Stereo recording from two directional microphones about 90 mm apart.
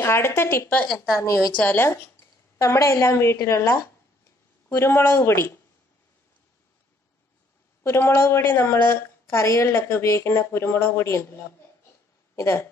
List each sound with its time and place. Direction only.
0.0 s a woman's voice: 30° left (ahead or behind)
1.1 s a woman's voice: 35° left (ahead or behind)
1.6 s a woman's voice: 20° left (ahead or behind)
1.9 s a woman's voice: 30° left (ahead or behind)
7.8 s a woman's voice: 30° left (ahead or behind)
12.4 s a woman's voice: 30° left (ahead or behind)